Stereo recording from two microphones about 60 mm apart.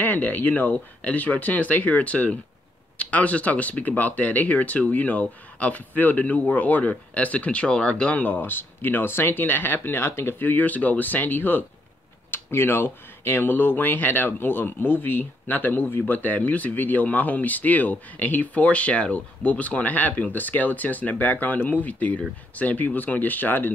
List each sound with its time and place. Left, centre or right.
0.0 s speech: left
8.4 s speech: left